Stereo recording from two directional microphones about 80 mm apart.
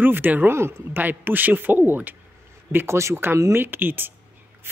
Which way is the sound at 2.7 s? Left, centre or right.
Right.